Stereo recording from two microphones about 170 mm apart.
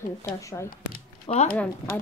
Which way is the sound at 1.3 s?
35° left (ahead or behind).